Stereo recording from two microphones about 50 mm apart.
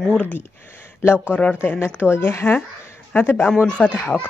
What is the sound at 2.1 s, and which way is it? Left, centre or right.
Speech, left.